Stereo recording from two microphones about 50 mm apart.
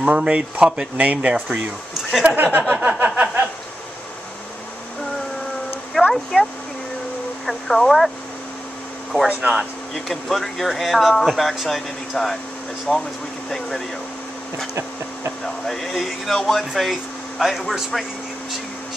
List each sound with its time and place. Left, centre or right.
0.0 s speech: right
2.2 s speech: right
2.7 s a sound: right
6.0 s a sound: centre
6.3 s speech: centre
9.3 s speech: right
9.6 s speech: centre
13.5 s a sound: centre
15.4 s speech: centre
16.9 s speech: centre